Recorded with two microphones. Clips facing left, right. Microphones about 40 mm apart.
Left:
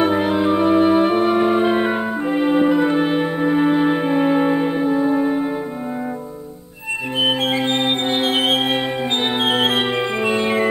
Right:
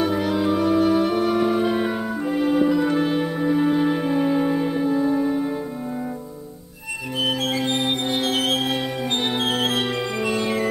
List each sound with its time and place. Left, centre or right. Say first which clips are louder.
0.0 s music: left 4 dB; left
7.2 s music: left 4 dB; left